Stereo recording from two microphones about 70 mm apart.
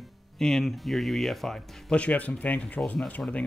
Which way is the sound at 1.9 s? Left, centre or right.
Centre.